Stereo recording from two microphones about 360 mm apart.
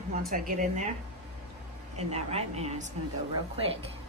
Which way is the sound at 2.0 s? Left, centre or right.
Centre.